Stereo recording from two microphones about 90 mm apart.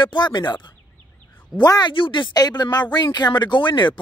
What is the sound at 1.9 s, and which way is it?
Speech, 65° left (ahead or behind).